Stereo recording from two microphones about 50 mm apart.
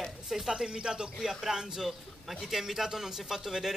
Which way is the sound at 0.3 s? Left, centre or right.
Centre.